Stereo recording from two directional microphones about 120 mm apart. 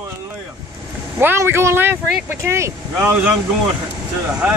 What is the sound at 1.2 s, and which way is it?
Speech, 20° right (ahead or behind).